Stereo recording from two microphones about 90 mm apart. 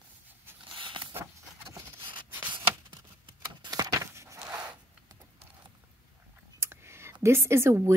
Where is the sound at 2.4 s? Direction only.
60° right (ahead or behind).